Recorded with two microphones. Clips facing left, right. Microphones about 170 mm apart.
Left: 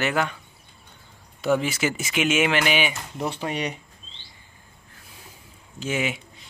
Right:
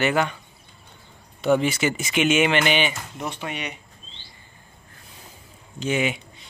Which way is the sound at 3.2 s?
35° left (ahead or behind).